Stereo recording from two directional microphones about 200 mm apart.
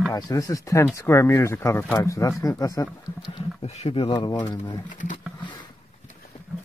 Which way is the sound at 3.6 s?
30° left (ahead or behind).